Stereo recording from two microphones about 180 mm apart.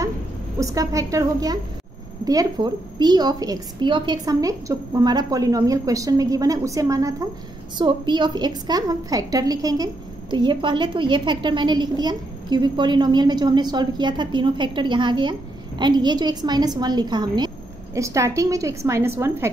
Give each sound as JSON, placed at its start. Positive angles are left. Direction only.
{"t": 0.6, "sound": "a woman's voice", "side_deg": -20}